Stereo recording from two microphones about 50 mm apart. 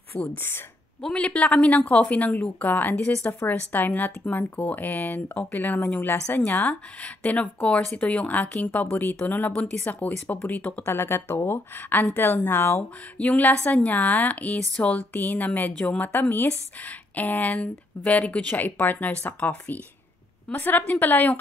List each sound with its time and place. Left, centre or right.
0.4 s a woman's voice: left
1.1 s a woman's voice: left
6.7 s a woman's voice: left
10.9 s a woman's voice: left
13.2 s speech: left
18.5 s speech: left